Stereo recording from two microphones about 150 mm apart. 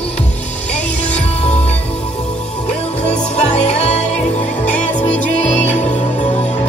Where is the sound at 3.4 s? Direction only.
50° left (ahead or behind).